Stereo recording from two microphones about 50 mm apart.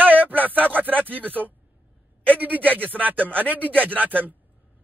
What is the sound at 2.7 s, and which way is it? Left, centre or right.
Speech, right.